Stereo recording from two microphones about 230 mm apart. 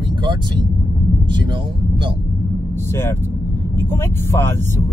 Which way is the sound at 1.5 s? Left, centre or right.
Right.